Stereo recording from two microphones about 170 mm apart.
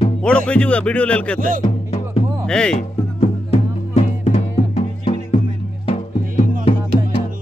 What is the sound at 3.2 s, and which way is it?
Music, 40° left (ahead or behind).